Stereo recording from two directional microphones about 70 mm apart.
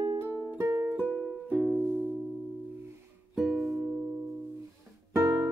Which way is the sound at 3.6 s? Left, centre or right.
Right.